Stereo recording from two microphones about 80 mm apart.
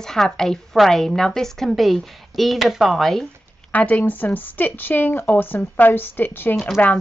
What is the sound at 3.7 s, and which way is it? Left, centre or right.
Speech, centre.